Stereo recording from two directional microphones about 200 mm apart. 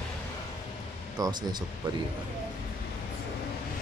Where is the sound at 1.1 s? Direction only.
20° right (ahead or behind).